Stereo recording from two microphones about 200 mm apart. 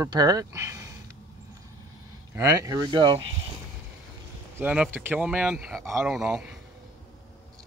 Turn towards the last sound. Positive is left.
turn(degrees=-5)  # may be behind; listen again after turning